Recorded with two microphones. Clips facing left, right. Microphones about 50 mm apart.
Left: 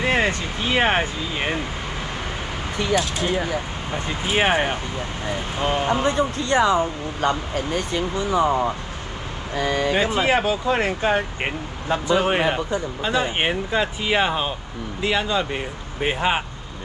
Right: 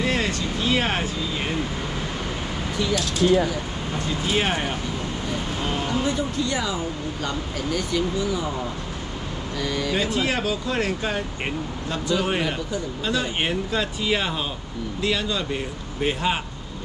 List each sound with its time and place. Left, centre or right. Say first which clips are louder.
0.0 s a sound: left 3 dB; left
2.8 s speech: even; left
6.0 s speech: left 3 dB; left
9.6 s speech: left 5 dB; left